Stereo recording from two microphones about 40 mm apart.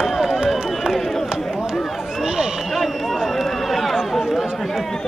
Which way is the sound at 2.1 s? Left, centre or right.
Centre.